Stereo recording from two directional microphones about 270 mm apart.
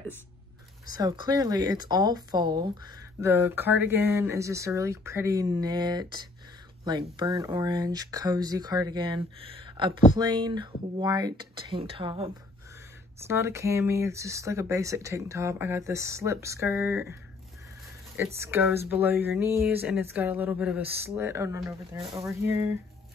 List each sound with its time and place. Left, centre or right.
0.9 s speech: centre
13.2 s speech: centre